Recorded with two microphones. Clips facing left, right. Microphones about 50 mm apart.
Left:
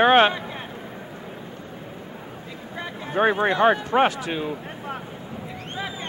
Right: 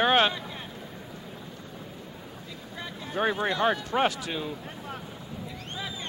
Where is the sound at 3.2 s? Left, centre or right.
Left.